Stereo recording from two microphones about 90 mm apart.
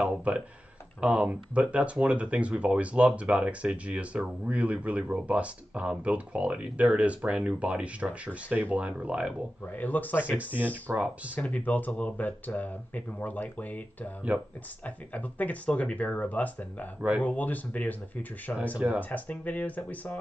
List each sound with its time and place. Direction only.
0.0 s speech: 15° right (ahead or behind)
9.7 s speech: 20° left (ahead or behind)
10.3 s speech: 15° right (ahead or behind)
11.3 s speech: 15° left (ahead or behind)
14.9 s speech: 15° left (ahead or behind)